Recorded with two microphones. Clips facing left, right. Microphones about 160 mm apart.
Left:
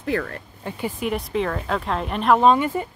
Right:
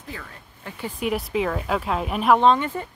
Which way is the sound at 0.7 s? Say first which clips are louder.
Left 5 dB; 20° left (ahead or behind).